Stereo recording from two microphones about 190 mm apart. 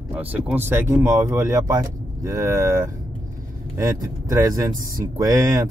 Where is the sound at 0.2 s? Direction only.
10° right (ahead or behind).